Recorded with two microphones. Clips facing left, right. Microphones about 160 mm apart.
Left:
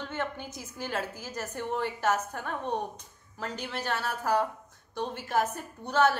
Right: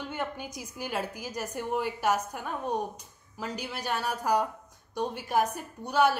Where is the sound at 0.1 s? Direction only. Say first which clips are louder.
Even; 15° right (ahead or behind).